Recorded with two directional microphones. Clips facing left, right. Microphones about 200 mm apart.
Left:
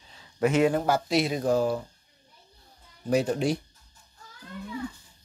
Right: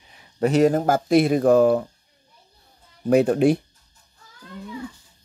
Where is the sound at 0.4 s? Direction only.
40° right (ahead or behind); by 1.9 s 60° right (ahead or behind).